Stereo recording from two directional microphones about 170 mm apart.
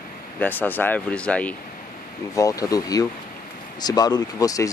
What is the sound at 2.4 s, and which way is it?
Speech, 20° left (ahead or behind).